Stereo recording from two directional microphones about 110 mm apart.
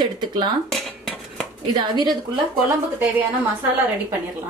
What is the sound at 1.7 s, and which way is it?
Speech, 40° right (ahead or behind).